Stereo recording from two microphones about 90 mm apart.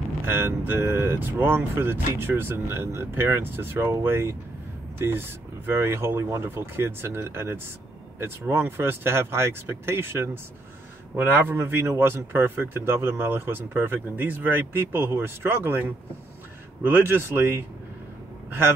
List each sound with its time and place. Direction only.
0.2 s speech: 25° right (ahead or behind)